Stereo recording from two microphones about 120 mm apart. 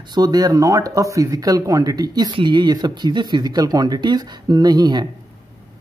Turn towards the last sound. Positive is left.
turn(degrees=-35)  # may be behind; listen again after turning